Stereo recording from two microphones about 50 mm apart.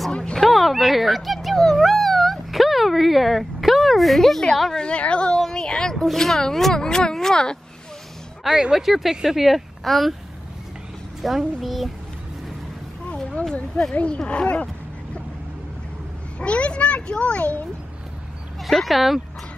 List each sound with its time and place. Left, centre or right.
0.2 s a sound: centre
0.5 s a sound: centre
4.6 s speech: centre
4.8 s a child's voice: left
8.5 s speech: centre
11.2 s speech: centre
13.2 s a sound: centre
13.9 s a child's voice: left
16.3 s a child's voice: left
18.6 s speech: centre